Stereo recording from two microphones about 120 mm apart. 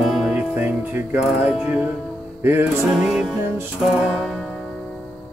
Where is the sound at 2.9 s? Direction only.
Centre (ahead or behind).